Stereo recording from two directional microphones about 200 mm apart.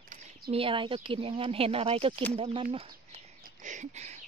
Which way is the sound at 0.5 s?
25° right (ahead or behind).